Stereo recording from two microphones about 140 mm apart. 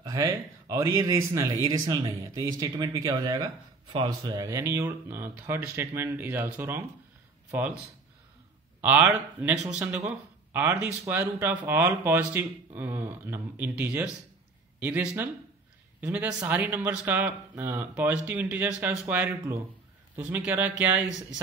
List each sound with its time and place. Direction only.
0.0 s speech: 25° right (ahead or behind)
8.8 s speech: 10° right (ahead or behind)